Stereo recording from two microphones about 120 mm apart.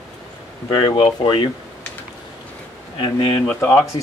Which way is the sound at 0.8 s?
40° left (ahead or behind).